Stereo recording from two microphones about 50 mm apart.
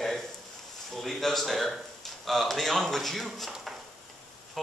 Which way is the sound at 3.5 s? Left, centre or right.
Centre.